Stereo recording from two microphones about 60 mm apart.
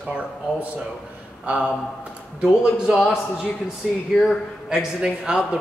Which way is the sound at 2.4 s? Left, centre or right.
Centre.